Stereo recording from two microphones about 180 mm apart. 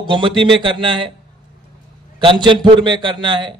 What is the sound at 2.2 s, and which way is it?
A man's voice, 25° right (ahead or behind).